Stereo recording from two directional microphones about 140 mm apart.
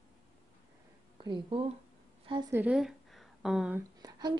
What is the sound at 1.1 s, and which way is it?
Speech, 35° right (ahead or behind).